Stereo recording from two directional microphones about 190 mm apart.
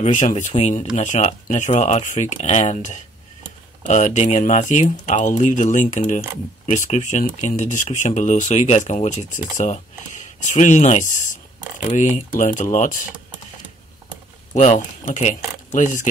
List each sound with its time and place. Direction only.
0.0 s speech: 40° left (ahead or behind)
14.5 s speech: 40° left (ahead or behind)